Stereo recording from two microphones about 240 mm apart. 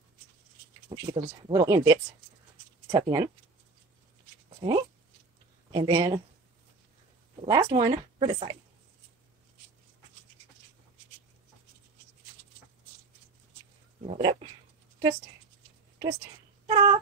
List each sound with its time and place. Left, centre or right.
0.9 s speech: centre
4.6 s speech: right
7.4 s speech: centre
14.0 s speech: right
16.6 s a sound: right